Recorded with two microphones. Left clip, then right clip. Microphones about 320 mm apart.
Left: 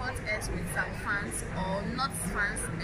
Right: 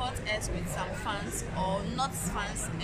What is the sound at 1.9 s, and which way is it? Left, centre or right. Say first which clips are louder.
Speech: left 1 dB; centre.